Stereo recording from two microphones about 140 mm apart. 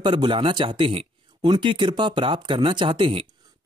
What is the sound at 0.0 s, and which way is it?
Speech, 35° right (ahead or behind).